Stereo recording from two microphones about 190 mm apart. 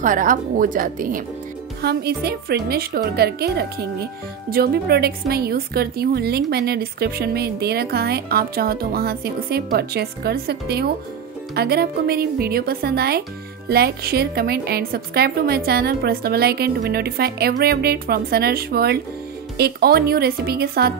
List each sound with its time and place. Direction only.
0.0 s a woman's voice: 45° right (ahead or behind)
1.8 s a woman's voice: 55° right (ahead or behind)